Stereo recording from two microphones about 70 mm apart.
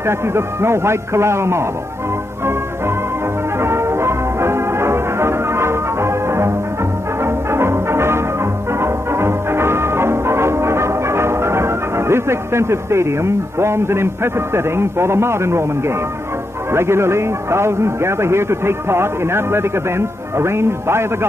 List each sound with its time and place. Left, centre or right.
0.0 s a man's voice: right
3.5 s music: right
16.7 s a man's voice: right